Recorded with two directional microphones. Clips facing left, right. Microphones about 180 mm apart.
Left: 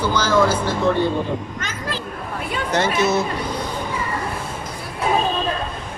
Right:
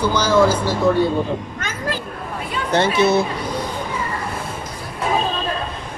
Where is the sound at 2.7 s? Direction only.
30° right (ahead or behind).